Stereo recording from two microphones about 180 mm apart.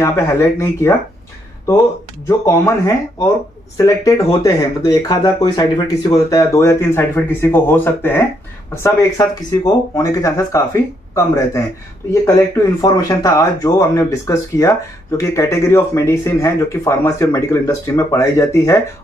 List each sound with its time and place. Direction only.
0.0 s speech: 15° left (ahead or behind)
2.2 s speech: 15° left (ahead or behind)
12.8 s speech: 20° left (ahead or behind)